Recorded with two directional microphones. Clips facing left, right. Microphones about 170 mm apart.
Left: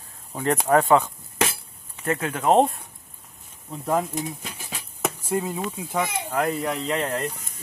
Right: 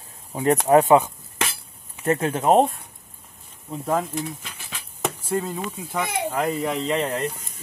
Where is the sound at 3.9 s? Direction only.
15° left (ahead or behind).